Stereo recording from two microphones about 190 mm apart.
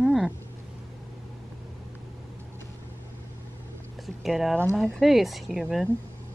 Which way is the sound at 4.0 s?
Centre (ahead or behind).